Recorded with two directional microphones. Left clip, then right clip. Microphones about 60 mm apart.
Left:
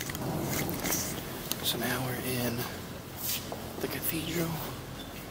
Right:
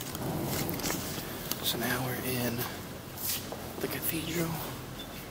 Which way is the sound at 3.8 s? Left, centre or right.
Centre.